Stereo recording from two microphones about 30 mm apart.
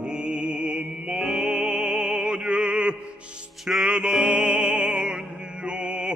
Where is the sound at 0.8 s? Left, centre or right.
Centre; by 3.0 s right.